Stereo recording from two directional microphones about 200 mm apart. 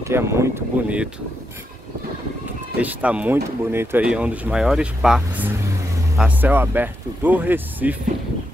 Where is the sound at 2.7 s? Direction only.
5° right (ahead or behind).